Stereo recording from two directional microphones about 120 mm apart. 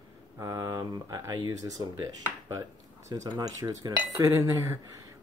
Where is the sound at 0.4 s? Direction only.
25° right (ahead or behind).